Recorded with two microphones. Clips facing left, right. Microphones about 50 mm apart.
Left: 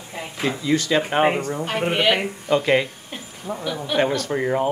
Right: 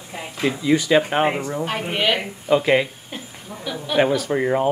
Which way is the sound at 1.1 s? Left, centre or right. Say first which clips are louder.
Left 1 dB; centre.